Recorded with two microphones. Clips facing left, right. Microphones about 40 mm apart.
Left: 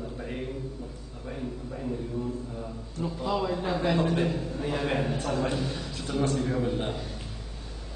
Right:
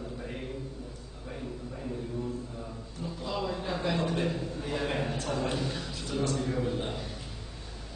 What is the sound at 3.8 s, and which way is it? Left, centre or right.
A man's voice, centre.